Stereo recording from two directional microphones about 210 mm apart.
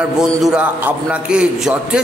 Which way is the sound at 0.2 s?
5° right (ahead or behind).